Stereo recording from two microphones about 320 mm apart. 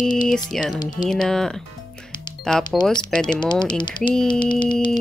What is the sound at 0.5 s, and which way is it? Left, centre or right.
Speech, centre.